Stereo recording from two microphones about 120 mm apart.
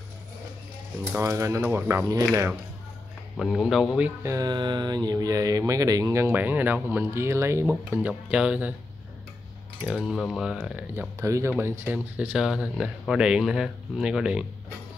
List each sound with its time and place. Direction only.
1.1 s speech: 25° right (ahead or behind)
3.3 s speech: centre (ahead or behind)
4.2 s speech: 25° right (ahead or behind)
4.5 s speech: 40° right (ahead or behind)
7.6 s speech: 10° right (ahead or behind)
9.8 s speech: centre (ahead or behind)
11.1 s speech: 25° right (ahead or behind); by 14.4 s 5° right (ahead or behind)